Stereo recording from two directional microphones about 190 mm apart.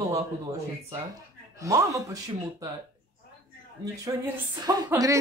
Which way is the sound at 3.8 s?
20° right (ahead or behind).